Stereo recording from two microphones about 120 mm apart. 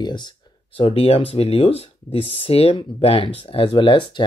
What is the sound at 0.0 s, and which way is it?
Speech, 35° left (ahead or behind).